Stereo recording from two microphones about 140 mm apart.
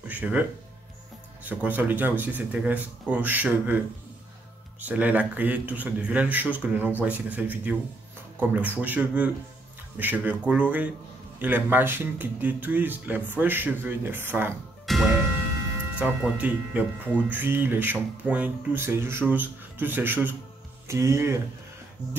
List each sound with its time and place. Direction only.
0.1 s speech: 10° right (ahead or behind)
1.5 s speech: 10° right (ahead or behind)
14.9 s music: centre (ahead or behind)
16.0 s speech: 10° right (ahead or behind)